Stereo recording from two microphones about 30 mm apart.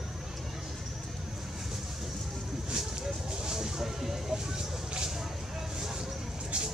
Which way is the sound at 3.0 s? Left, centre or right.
Centre.